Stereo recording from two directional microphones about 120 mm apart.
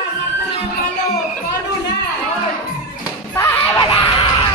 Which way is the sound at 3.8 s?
45° left (ahead or behind).